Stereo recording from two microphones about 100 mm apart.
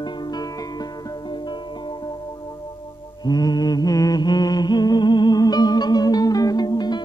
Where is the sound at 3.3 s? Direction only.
40° left (ahead or behind).